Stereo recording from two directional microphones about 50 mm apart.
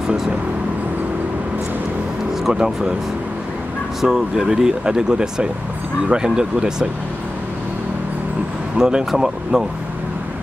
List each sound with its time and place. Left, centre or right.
2.4 s speech: centre
4.0 s speech: centre
8.7 s speech: centre